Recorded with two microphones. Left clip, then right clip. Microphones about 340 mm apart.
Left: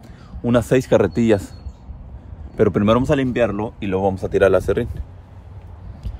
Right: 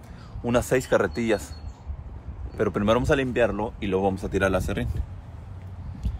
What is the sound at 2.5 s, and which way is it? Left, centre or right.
Speech, left.